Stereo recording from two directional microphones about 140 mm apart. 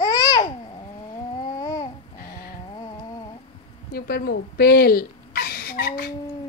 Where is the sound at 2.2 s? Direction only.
90° left.